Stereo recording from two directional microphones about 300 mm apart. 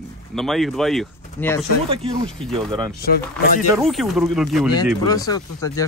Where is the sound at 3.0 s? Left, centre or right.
Left.